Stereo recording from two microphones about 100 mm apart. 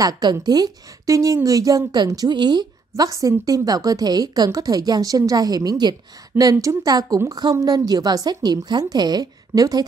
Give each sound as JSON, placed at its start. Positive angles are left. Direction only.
{"t": 0.0, "sound": "a woman's voice", "side_deg": -40}
{"t": 6.5, "sound": "a woman's voice", "side_deg": -35}